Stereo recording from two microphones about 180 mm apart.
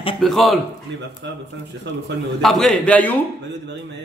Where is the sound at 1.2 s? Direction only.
75° right (ahead or behind).